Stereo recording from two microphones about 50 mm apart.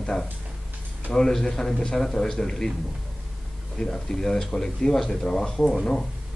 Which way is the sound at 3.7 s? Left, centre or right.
Centre.